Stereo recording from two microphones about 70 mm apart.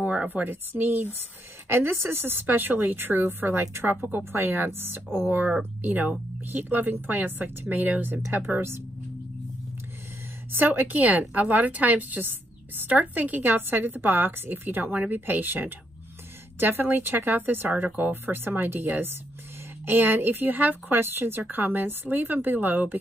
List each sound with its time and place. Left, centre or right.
0.0 s a woman's voice: right
10.5 s a woman's voice: right